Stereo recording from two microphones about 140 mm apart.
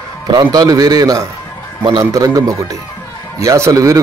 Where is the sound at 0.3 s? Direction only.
25° right (ahead or behind).